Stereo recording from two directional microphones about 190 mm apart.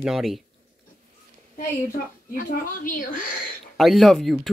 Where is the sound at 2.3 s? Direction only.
45° left (ahead or behind).